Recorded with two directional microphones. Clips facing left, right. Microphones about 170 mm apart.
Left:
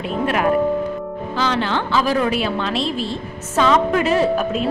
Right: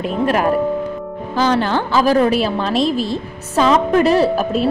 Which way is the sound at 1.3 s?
45° right (ahead or behind).